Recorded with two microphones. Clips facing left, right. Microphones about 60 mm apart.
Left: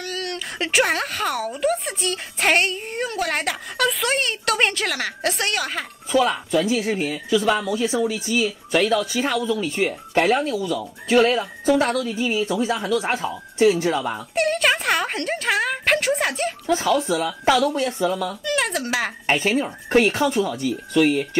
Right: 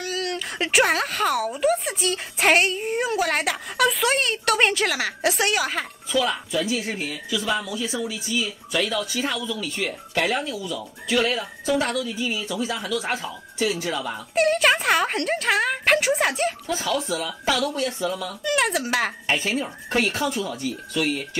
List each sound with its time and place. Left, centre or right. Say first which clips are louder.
0.0 s speech: right 1 dB; centre
7.0 s speech: left 7 dB; left
14.3 s speech: right 2 dB; centre
16.6 s speech: left 5 dB; left
18.4 s speech: right 1 dB; centre
19.2 s speech: left 4 dB; left
20.4 s speech: left 4 dB; left